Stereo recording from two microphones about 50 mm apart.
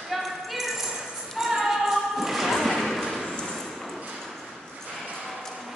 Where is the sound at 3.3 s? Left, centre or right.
Centre.